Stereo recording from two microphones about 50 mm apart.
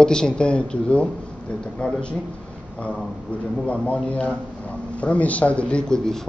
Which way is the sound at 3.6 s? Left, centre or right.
Left.